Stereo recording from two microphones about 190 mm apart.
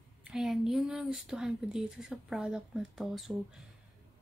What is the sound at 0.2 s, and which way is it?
Speech, 5° right (ahead or behind).